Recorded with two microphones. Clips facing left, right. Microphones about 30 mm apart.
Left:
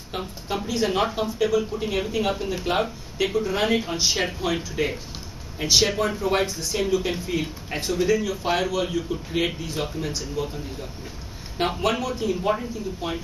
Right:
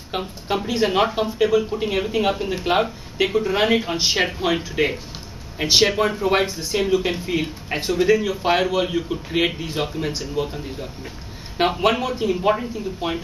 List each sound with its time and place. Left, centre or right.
0.1 s speech: right